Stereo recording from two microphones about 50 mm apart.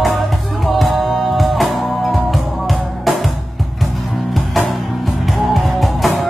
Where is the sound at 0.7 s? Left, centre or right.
Centre.